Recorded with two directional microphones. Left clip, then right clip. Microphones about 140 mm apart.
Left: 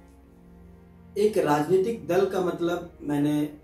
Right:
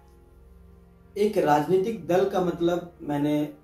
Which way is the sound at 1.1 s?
25° right (ahead or behind).